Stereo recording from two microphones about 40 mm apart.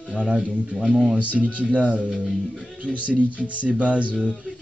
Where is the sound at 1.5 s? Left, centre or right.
Right.